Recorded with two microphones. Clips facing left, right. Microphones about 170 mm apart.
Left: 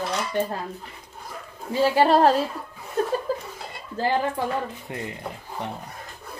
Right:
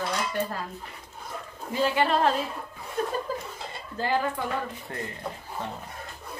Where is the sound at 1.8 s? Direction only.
35° left (ahead or behind).